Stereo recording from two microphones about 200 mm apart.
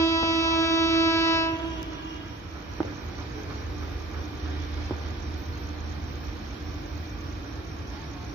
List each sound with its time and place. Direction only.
0.0 s train: 15° left (ahead or behind)